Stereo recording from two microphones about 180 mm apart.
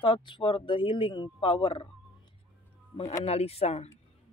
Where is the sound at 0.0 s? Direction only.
25° left (ahead or behind).